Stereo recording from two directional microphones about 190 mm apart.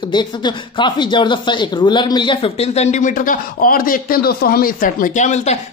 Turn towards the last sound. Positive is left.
turn(degrees=35)  # may be behind; listen again after turning